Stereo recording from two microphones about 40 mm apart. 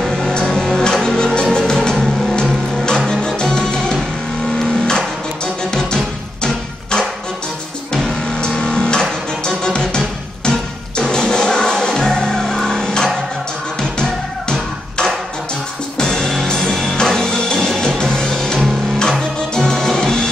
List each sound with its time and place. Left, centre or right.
0.3 s music: centre
8.4 s a sound: centre
9.4 s music: left
16.0 s music: centre